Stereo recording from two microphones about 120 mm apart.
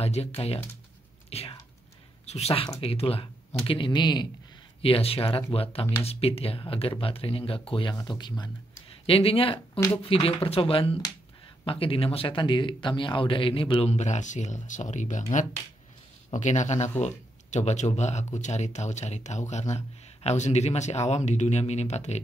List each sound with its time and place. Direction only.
0.0 s speech: 60° left (ahead or behind); by 4.3 s 35° left (ahead or behind)
4.8 s speech: 50° left (ahead or behind)
7.9 s speech: 35° left (ahead or behind)
8.8 s speech: 50° left (ahead or behind)
13.8 s speech: 75° left (ahead or behind); by 15.4 s 90° left
16.3 s speech: 80° left
20.2 s speech: 70° left (ahead or behind)